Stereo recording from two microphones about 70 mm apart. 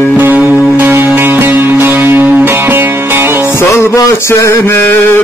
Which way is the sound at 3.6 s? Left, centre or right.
Left.